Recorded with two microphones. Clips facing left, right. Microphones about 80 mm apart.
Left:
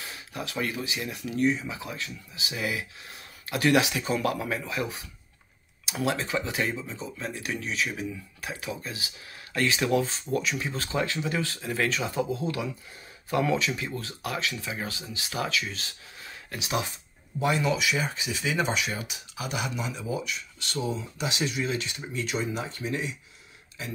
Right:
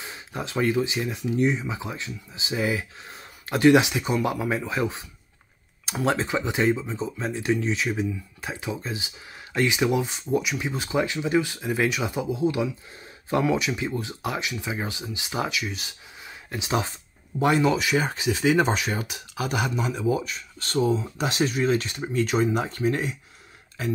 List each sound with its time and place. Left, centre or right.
0.0 s speech: right
6.0 s speech: right
17.4 s speech: right